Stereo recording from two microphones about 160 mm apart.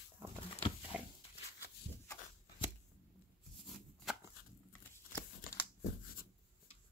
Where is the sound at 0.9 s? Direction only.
5° right (ahead or behind).